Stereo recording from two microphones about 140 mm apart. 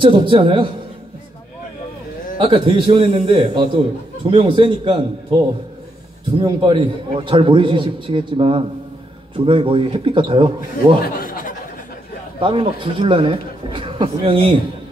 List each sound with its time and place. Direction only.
0.0 s a man's voice: 35° right (ahead or behind)
2.3 s a man's voice: 40° right (ahead or behind)
6.4 s a man's voice: 35° right (ahead or behind)
11.1 s a sound: 80° left
12.4 s a man's voice: 35° right (ahead or behind)